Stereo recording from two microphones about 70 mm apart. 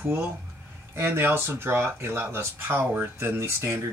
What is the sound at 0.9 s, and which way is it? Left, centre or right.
Speech, right.